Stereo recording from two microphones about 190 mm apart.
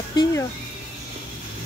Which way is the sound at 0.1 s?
20° left (ahead or behind).